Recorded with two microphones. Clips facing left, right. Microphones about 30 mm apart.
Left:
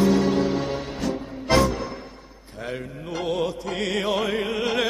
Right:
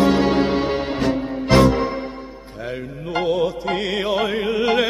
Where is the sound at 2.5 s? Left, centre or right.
Centre.